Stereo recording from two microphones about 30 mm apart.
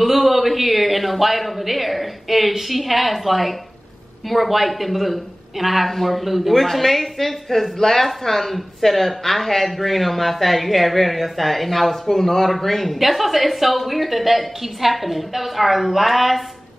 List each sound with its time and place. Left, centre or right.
0.0 s a man's voice: centre